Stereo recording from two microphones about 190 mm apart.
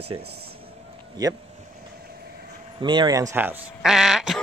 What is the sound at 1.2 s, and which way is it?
Speech, 20° right (ahead or behind).